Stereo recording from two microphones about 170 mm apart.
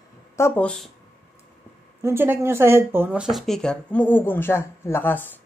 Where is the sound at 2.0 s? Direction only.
15° right (ahead or behind); by 5.3 s 10° left (ahead or behind).